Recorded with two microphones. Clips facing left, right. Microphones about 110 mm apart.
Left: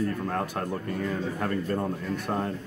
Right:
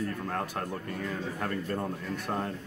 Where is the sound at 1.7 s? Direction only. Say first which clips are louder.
Left 4 dB; 40° left (ahead or behind).